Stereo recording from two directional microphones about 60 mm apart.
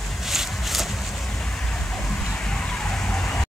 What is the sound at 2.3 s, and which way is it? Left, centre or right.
Emergency vehicle, centre.